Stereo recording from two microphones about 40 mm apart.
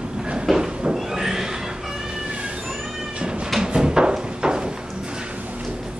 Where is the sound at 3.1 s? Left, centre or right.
Right.